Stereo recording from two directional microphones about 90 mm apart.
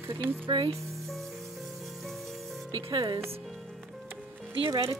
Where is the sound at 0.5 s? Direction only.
60° right (ahead or behind).